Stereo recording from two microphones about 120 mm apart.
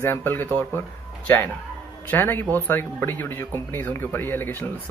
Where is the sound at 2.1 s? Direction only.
15° left (ahead or behind).